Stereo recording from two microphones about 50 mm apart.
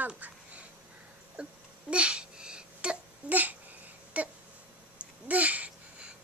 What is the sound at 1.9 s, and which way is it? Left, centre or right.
Babbling, right.